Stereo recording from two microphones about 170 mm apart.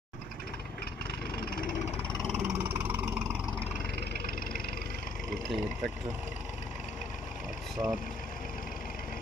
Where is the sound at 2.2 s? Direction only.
5° right (ahead or behind).